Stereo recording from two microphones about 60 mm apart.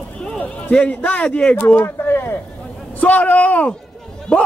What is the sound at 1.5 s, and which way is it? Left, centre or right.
Speech, left.